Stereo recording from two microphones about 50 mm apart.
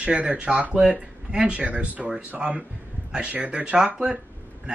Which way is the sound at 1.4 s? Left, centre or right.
Right.